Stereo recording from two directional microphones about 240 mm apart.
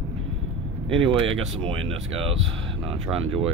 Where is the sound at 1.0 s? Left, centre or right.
Right.